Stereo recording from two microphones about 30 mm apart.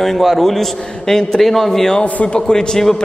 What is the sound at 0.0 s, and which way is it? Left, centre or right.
A man's voice, centre.